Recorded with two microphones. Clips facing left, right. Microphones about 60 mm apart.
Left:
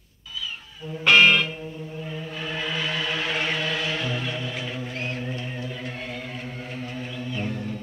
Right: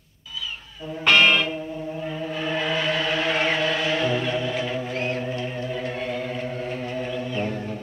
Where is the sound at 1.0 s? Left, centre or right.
Centre.